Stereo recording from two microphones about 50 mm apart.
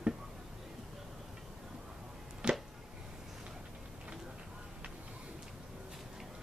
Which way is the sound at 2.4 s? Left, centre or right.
Centre.